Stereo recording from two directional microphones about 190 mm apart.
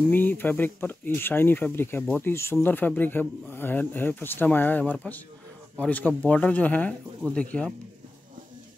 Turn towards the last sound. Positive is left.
turn(degrees=5)  # may be behind; listen again after turning